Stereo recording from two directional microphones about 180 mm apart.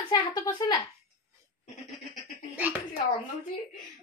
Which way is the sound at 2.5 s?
10° right (ahead or behind).